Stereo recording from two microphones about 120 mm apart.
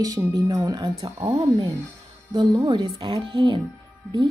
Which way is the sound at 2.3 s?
35° right (ahead or behind).